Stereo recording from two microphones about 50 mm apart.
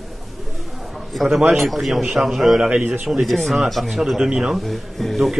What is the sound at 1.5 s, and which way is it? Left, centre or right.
A woman's voice, centre.